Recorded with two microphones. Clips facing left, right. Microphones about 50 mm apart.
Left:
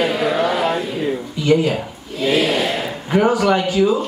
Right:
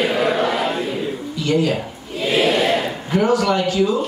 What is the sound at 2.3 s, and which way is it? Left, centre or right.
Speech, centre.